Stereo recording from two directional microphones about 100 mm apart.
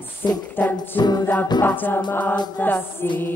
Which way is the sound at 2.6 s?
20° left (ahead or behind).